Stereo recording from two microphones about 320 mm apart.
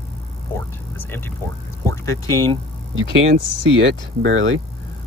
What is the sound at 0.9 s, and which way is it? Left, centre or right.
Speech, centre.